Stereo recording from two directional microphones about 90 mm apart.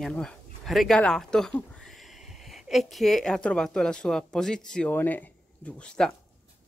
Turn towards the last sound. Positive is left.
turn(degrees=10)  # may be behind; listen again after turning